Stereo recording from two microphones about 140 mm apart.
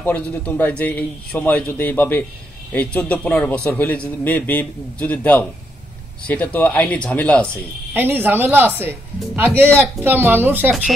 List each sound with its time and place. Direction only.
0.0 s a man's voice: 10° left (ahead or behind)
7.9 s speech: 15° right (ahead or behind)